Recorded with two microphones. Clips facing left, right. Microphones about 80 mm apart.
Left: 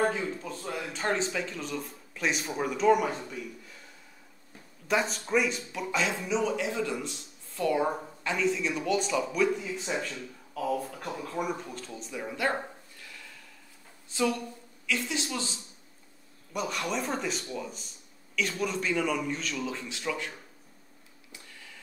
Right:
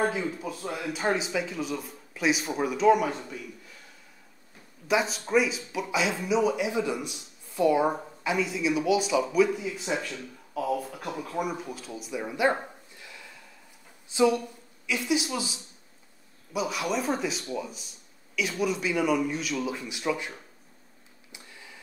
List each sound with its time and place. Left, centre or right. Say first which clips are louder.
0.0 s speech: right 1 dB; centre
4.8 s speech: right 2 dB; centre
21.3 s a sound: right 1 dB; centre